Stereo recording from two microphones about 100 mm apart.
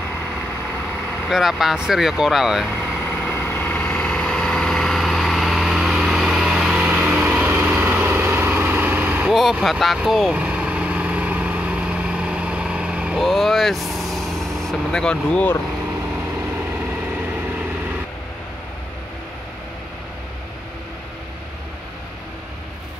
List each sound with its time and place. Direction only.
1.2 s speech: centre (ahead or behind)
2.9 s vehicle: 20° left (ahead or behind); by 6.8 s 5° right (ahead or behind)
6.8 s lawn mower: 15° right (ahead or behind)
9.3 s speech: centre (ahead or behind)
10.3 s vehicle: 15° right (ahead or behind)
13.2 s speech: centre (ahead or behind)
15.8 s vehicle: 15° right (ahead or behind)